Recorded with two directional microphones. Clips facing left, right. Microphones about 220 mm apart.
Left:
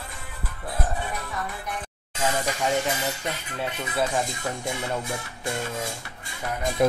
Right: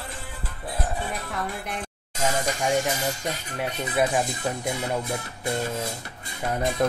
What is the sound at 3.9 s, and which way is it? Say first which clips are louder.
Speech: right 3 dB; 20° right (ahead or behind).